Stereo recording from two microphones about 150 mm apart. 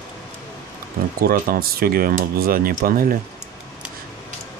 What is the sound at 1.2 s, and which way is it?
Speech, 80° right.